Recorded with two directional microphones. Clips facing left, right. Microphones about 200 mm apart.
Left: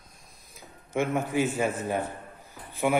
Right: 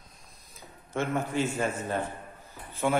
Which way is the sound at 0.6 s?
15° left (ahead or behind).